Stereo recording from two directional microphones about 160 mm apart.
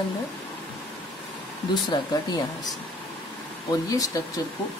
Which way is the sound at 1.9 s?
30° left (ahead or behind).